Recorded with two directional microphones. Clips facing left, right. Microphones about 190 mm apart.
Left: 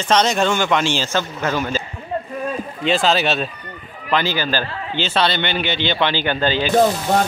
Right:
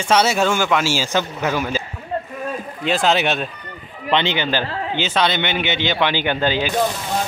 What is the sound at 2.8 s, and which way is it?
Speech, 15° right (ahead or behind).